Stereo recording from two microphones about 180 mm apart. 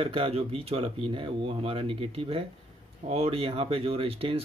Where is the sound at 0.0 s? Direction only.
30° right (ahead or behind).